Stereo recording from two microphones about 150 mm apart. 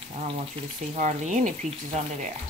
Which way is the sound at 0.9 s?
55° right (ahead or behind).